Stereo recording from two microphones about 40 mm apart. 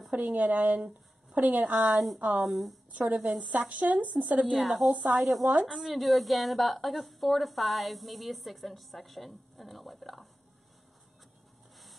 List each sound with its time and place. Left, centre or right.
0.1 s speech: right
2.4 s a woman's voice: centre
2.9 s a woman's voice: right
4.5 s a woman's voice: centre